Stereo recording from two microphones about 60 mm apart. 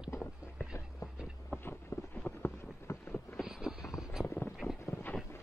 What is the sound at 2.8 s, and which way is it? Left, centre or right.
Vehicle, left.